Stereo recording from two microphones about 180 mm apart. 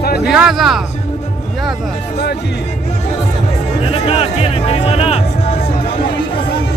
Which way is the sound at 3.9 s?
35° left (ahead or behind).